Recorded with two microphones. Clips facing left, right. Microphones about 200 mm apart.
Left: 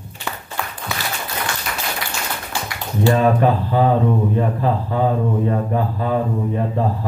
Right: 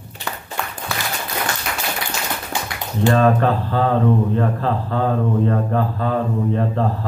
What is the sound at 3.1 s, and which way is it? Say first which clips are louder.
Speech: even; 15° left (ahead or behind).